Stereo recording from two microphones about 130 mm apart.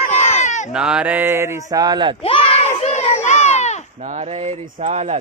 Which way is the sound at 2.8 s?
55° left (ahead or behind).